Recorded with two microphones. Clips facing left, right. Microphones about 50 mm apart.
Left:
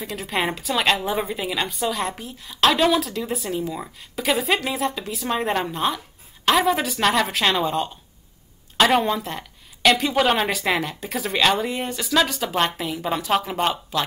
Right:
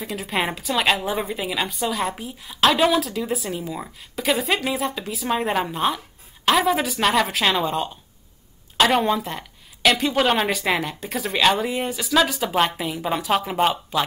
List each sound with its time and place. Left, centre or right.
0.0 s a woman's voice: centre